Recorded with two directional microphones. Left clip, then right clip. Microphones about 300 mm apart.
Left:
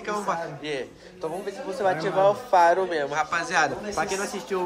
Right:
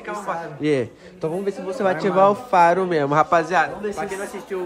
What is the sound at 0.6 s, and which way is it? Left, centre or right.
Speech, centre.